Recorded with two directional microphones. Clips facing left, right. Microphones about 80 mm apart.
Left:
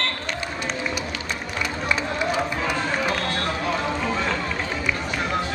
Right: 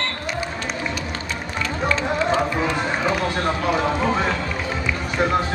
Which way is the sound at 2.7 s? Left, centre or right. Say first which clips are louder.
Right 2 dB; centre.